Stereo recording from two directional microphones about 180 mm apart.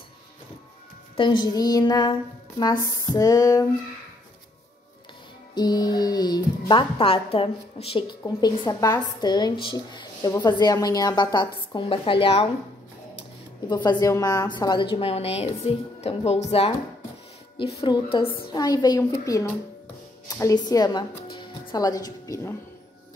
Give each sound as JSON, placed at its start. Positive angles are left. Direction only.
{"t": 1.1, "sound": "speech", "side_deg": 25}
{"t": 5.5, "sound": "speech", "side_deg": 25}
{"t": 8.2, "sound": "speech", "side_deg": 20}
{"t": 13.7, "sound": "a woman's voice", "side_deg": 25}
{"t": 17.7, "sound": "speech", "side_deg": 25}